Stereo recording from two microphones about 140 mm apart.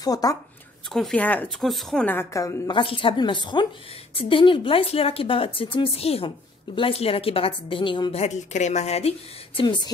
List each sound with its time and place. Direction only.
0.0 s a woman's voice: 25° left (ahead or behind)
0.9 s speech: 5° left (ahead or behind)
1.7 s a woman's voice: centre (ahead or behind)
2.0 s a woman's voice: 20° left (ahead or behind)
2.7 s a woman's voice: 40° left (ahead or behind)
9.6 s a woman's voice: 35° left (ahead or behind)